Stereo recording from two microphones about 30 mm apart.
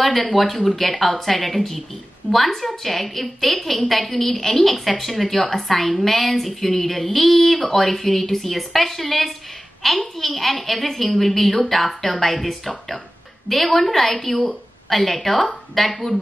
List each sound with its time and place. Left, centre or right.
0.3 s a woman's voice: centre
0.7 s a woman's voice: centre